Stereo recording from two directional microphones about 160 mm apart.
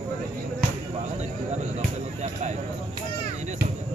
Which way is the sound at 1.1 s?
45° right (ahead or behind).